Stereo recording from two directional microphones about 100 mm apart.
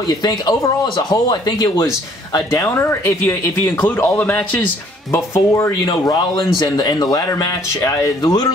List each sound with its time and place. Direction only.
0.1 s speech: 45° left (ahead or behind)
2.6 s speech: 25° left (ahead or behind)
5.1 s speech: 25° left (ahead or behind)
6.3 s speech: 50° left (ahead or behind)